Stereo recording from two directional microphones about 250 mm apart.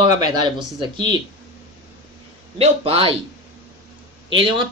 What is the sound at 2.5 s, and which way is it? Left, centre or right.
Speech, right.